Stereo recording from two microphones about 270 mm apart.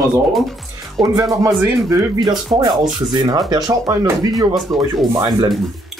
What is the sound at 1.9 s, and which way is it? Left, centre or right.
Speech, centre.